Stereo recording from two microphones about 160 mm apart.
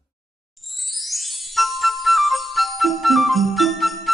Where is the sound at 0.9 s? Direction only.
Centre (ahead or behind).